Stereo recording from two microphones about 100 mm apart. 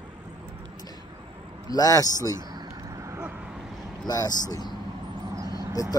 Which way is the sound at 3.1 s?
25° right (ahead or behind).